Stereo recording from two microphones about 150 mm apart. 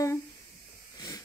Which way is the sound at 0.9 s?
20° left (ahead or behind).